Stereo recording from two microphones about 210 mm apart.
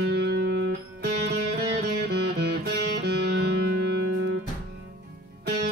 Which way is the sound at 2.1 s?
50° right (ahead or behind).